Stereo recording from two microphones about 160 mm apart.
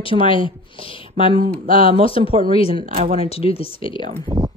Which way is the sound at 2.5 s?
35° left (ahead or behind).